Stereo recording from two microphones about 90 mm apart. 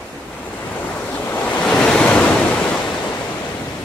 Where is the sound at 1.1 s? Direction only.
20° left (ahead or behind).